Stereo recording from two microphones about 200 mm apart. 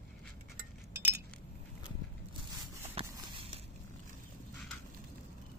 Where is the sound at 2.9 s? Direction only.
30° right (ahead or behind).